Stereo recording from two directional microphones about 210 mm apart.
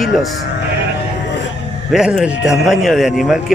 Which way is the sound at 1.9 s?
Centre (ahead or behind).